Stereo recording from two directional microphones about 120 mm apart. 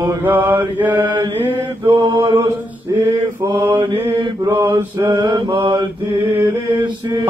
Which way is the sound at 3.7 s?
40° right (ahead or behind).